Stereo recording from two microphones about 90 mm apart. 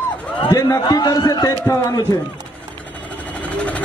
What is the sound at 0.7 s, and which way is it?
Speech, 50° left (ahead or behind).